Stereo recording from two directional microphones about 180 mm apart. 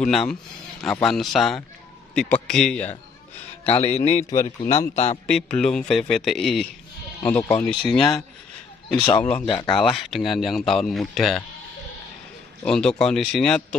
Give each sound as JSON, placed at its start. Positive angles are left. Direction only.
{"t": 0.0, "sound": "speech", "side_deg": 0}
{"t": 3.6, "sound": "speech", "side_deg": 35}
{"t": 5.2, "sound": "speech", "side_deg": 5}
{"t": 7.9, "sound": "speech", "side_deg": 0}
{"t": 8.9, "sound": "speech", "side_deg": 30}
{"t": 9.8, "sound": "speech", "side_deg": 0}
{"t": 12.6, "sound": "speech", "side_deg": 5}